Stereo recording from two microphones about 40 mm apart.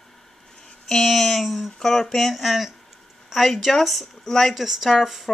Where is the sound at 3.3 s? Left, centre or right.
Centre.